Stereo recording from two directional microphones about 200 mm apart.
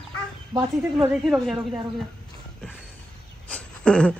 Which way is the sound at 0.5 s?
20° right (ahead or behind).